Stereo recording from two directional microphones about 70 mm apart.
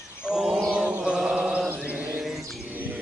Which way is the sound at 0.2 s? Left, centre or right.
Centre.